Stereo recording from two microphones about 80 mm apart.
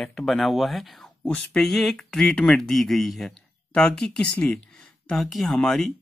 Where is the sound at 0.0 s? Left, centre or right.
Centre.